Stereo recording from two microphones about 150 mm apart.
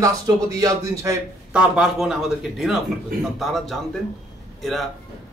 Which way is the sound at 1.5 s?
5° right (ahead or behind).